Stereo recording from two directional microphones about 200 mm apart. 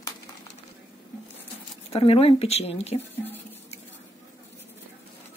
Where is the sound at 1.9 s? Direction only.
30° left (ahead or behind).